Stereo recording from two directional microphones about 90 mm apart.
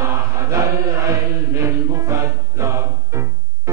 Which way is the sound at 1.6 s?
30° right (ahead or behind).